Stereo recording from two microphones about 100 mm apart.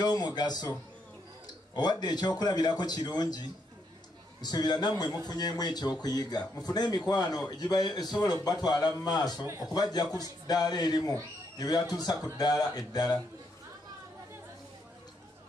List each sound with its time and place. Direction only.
0.0 s a man's voice: 45° left (ahead or behind)
1.8 s a man's voice: 45° left (ahead or behind)